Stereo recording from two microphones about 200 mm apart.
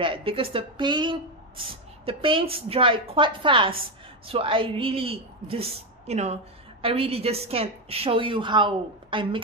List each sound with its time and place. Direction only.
0.0 s a woman's voice: 25° right (ahead or behind)